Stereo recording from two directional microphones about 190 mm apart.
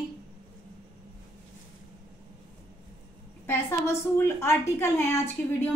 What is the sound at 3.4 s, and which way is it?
A woman's voice, 15° left (ahead or behind).